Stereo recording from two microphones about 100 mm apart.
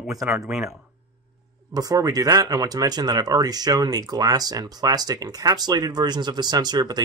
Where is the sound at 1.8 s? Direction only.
40° right (ahead or behind).